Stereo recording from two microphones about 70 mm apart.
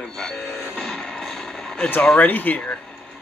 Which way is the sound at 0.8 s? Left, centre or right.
Centre.